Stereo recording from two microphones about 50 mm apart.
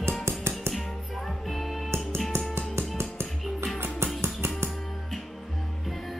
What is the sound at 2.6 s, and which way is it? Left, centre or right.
Music, right.